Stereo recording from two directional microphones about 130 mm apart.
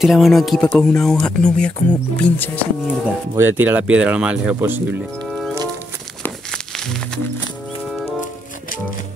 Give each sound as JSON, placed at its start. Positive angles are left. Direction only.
{"t": 0.0, "sound": "speech", "side_deg": 0}
{"t": 3.3, "sound": "speech", "side_deg": -15}
{"t": 6.5, "sound": "music", "side_deg": 5}